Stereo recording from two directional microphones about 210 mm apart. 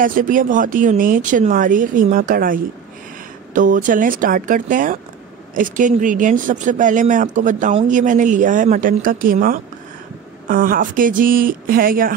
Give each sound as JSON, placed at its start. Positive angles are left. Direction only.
{"t": 0.0, "sound": "speech", "side_deg": -40}